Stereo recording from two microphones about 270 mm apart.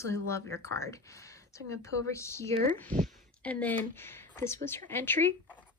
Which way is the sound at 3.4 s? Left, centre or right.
Centre.